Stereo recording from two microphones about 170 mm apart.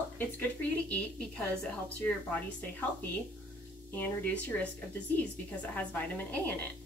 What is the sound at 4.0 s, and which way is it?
A woman's voice, 10° left (ahead or behind).